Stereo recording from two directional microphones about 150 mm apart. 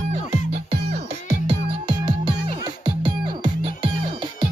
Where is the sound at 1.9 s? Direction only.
30° right (ahead or behind).